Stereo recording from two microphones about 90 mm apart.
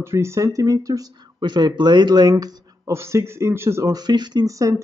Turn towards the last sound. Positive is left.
turn(degrees=-40)  # may be behind; listen again after turning